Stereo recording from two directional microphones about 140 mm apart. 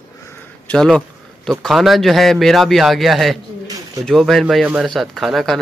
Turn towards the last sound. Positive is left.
turn(degrees=0)  # may be behind; listen again after turning